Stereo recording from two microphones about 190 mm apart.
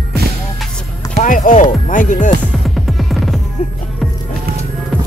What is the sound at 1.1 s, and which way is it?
Speech, 45° left (ahead or behind).